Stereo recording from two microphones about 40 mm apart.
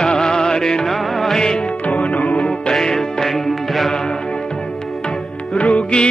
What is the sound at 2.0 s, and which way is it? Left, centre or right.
Music, left.